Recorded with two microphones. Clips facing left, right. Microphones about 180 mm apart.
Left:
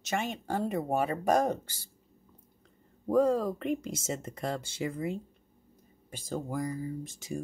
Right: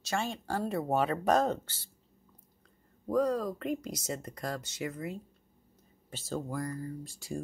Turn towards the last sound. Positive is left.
turn(degrees=20)  # may be behind; listen again after turning